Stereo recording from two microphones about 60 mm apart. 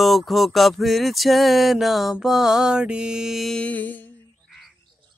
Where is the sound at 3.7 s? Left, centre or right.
Left.